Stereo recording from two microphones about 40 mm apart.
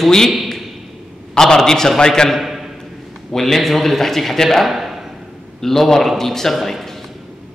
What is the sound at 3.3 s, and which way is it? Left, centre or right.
A man's voice, centre.